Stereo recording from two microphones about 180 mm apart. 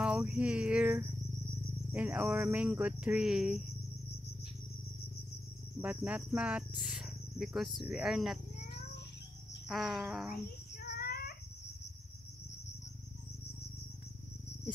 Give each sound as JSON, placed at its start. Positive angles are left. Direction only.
{"t": 0.0, "sound": "cricket", "side_deg": -5}
{"t": 1.9, "sound": "speech", "side_deg": -10}
{"t": 5.8, "sound": "speech", "side_deg": -10}
{"t": 9.7, "sound": "speech", "side_deg": 0}
{"t": 10.8, "sound": "child singing", "side_deg": 60}